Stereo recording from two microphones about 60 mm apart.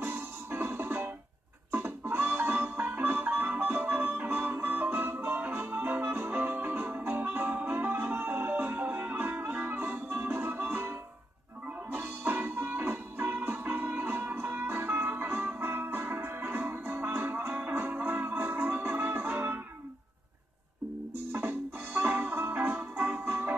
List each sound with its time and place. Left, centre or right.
0.0 s music: right
11.9 s music: right
21.3 s music: right
23.2 s music: right